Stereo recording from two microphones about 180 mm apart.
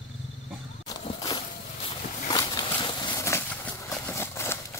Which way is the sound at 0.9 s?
20° left (ahead or behind).